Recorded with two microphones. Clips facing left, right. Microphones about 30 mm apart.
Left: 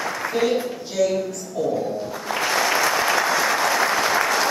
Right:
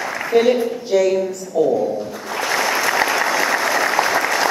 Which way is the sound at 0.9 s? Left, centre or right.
Centre.